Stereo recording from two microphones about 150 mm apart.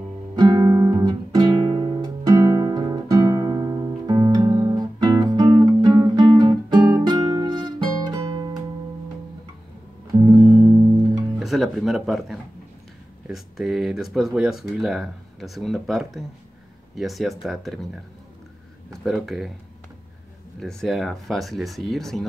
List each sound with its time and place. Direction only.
0.4 s guitar: 25° right (ahead or behind)
2.3 s music: 20° right (ahead or behind)
10.1 s music: 25° right (ahead or behind)
11.3 s speech: centre (ahead or behind)
19.0 s speech: centre (ahead or behind)
20.5 s speech: 5° left (ahead or behind)